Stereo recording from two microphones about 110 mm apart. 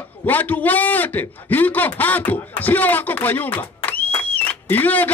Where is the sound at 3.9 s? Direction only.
15° left (ahead or behind).